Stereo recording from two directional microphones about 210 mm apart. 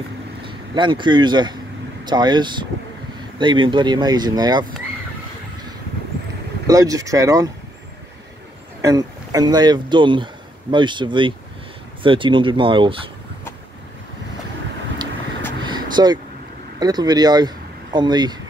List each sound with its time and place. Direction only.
0.5 s speech: 25° right (ahead or behind)
6.7 s speech: 15° right (ahead or behind)
8.8 s speech: 15° right (ahead or behind)
15.6 s vehicle: 20° right (ahead or behind)
16.8 s speech: 20° right (ahead or behind)